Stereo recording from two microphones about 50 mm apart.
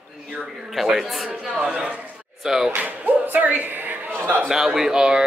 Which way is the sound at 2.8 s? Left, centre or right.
Right.